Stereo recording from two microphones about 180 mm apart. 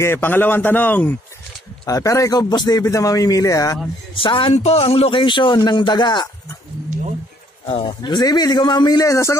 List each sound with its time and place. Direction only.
0.0 s a man's voice: 10° left (ahead or behind)
4.1 s a man's voice: 30° left (ahead or behind)
7.6 s a man's voice: 25° left (ahead or behind)